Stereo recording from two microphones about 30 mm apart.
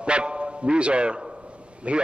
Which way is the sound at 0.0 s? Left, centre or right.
Right.